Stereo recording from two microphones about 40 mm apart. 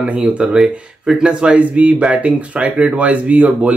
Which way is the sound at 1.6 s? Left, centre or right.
Right.